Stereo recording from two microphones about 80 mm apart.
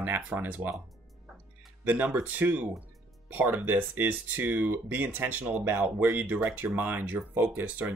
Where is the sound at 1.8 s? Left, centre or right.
Right.